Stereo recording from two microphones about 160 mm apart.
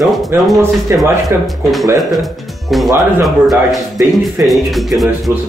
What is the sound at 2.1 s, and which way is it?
Speech, centre (ahead or behind).